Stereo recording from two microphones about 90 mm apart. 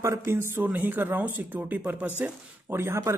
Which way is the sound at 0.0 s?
30° right (ahead or behind).